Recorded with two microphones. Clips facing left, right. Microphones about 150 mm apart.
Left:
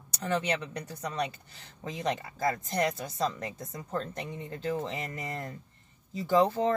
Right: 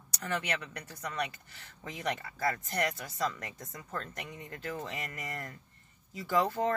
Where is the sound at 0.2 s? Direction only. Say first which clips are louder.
Left 5 dB; 30° left (ahead or behind).